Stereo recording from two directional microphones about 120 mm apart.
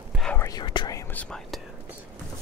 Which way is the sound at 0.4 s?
35° left (ahead or behind).